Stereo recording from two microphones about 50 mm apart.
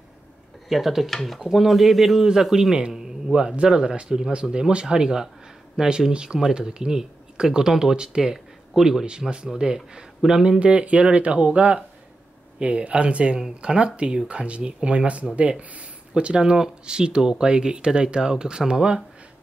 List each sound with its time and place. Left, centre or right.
0.7 s speech: centre
10.6 s speech: right